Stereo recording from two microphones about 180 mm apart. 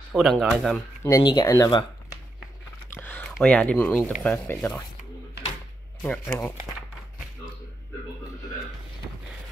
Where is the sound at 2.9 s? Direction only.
10° left (ahead or behind).